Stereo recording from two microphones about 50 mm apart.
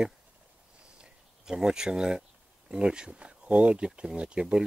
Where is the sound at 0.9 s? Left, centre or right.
Centre.